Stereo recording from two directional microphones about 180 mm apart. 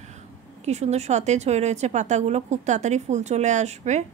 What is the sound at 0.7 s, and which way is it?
Speech, 40° right (ahead or behind).